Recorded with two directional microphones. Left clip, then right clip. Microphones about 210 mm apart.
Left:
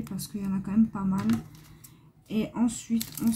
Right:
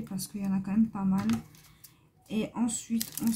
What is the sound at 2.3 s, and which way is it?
Speech, 10° right (ahead or behind).